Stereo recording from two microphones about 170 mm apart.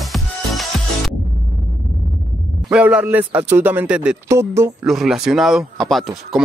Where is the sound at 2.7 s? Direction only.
5° right (ahead or behind).